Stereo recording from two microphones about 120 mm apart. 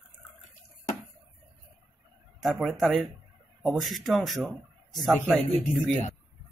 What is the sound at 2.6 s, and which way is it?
Speech, centre (ahead or behind).